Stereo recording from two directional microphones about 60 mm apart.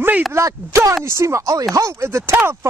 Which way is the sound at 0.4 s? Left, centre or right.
Right.